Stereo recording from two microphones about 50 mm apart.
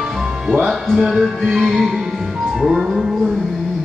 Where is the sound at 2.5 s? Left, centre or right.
Centre.